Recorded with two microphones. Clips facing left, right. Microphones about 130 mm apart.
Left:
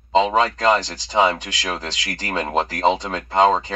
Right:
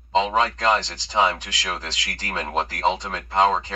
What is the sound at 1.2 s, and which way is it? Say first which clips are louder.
Speech: left 3 dB; 20° left (ahead or behind).